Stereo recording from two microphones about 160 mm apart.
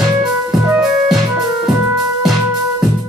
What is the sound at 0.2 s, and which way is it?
Music, 5° right (ahead or behind).